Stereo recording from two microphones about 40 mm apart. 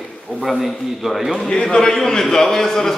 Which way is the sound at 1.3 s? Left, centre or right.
Centre.